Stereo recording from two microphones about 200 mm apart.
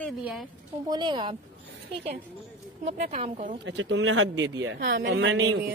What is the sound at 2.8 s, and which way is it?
Speech, 35° right (ahead or behind).